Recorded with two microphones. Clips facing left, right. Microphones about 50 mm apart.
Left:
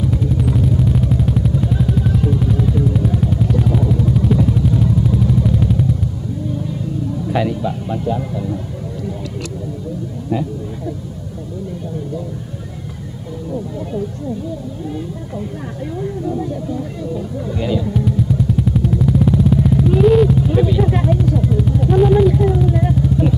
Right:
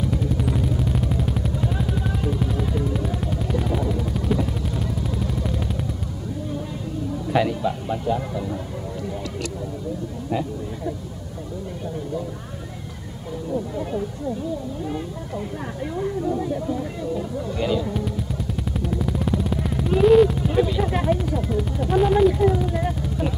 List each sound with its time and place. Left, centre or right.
0.0 s vehicle: centre
7.3 s speech: centre
16.0 s speech: centre
17.6 s vehicle: centre